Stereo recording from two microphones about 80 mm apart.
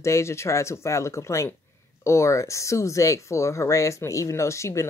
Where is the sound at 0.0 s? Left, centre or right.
Left.